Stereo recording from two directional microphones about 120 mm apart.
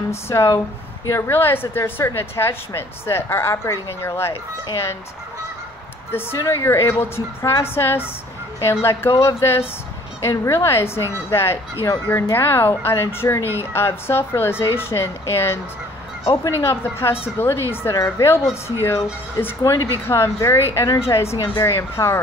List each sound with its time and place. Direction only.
0.1 s a woman's voice: 25° left (ahead or behind)
6.1 s a woman's voice: 25° left (ahead or behind)